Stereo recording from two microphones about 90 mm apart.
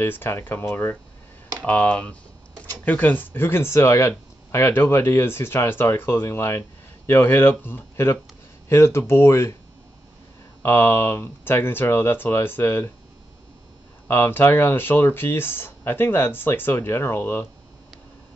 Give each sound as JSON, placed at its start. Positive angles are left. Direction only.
{"t": 0.0, "sound": "speech", "side_deg": 25}
{"t": 1.6, "sound": "speech", "side_deg": 15}
{"t": 10.6, "sound": "speech", "side_deg": 25}
{"t": 14.0, "sound": "speech", "side_deg": 25}